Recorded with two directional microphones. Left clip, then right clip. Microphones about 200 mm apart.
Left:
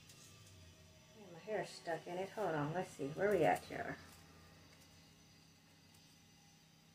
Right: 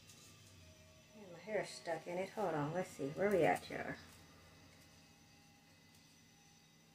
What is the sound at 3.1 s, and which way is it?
Speech, 20° right (ahead or behind).